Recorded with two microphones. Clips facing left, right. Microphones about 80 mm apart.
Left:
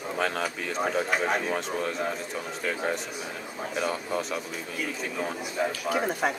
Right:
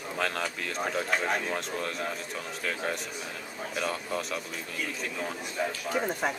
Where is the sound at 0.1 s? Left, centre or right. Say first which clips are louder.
Left 2 dB; centre.